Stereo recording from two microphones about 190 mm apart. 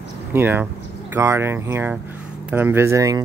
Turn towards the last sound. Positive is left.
turn(degrees=-15)  # may be behind; listen again after turning